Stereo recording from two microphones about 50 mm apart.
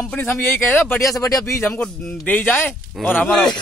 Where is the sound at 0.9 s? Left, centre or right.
Left.